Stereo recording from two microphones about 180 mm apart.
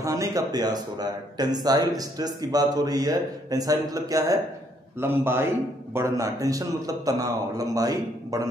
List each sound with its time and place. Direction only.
0.0 s a man's voice: 20° right (ahead or behind)